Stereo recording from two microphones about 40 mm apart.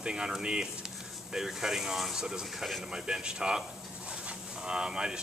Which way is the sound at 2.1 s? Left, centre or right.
Centre.